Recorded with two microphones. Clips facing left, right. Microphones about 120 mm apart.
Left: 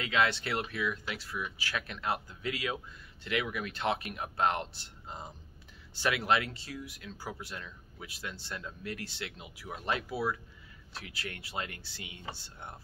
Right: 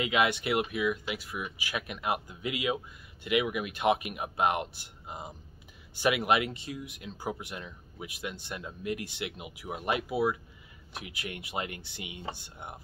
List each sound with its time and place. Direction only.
0.0 s speech: 15° right (ahead or behind)